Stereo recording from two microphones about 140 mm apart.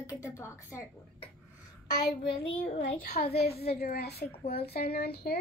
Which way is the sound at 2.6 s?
60° left (ahead or behind).